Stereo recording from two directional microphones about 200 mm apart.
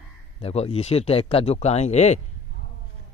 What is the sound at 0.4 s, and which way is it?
Speech, 30° left (ahead or behind).